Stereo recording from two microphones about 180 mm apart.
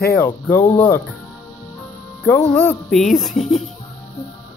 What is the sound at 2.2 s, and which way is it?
Speech, 10° left (ahead or behind).